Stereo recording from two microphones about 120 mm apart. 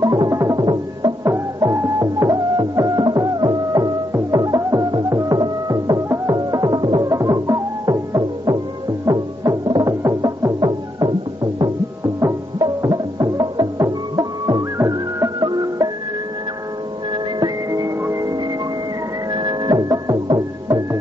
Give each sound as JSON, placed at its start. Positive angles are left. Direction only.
{"t": 0.0, "sound": "music", "side_deg": -30}
{"t": 1.2, "sound": "music", "side_deg": -25}
{"t": 12.5, "sound": "music", "side_deg": -35}
{"t": 17.6, "sound": "music", "side_deg": -25}